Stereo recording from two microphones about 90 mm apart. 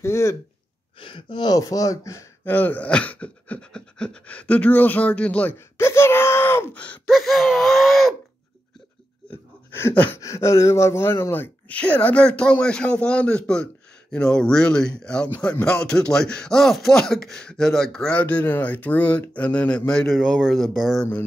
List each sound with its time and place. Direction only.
0.0 s speech: 30° left (ahead or behind)
0.9 s speech: 70° left (ahead or behind); by 2.2 s 35° left (ahead or behind)
2.4 s speech: 20° left (ahead or behind)
5.8 s speech: 30° left (ahead or behind)
7.1 s wheeze: centre (ahead or behind)
10.1 s speech: 35° left (ahead or behind); by 20.1 s 10° left (ahead or behind)
20.1 s wheeze: centre (ahead or behind)